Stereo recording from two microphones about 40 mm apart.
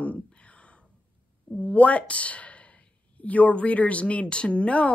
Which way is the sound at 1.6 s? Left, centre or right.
Left.